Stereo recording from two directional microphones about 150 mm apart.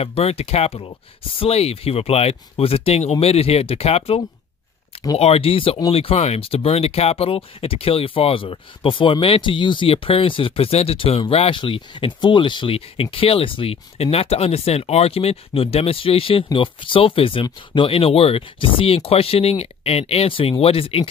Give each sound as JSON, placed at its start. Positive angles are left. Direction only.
{"t": 0.0, "sound": "speech", "side_deg": 45}
{"t": 5.2, "sound": "speech", "side_deg": 40}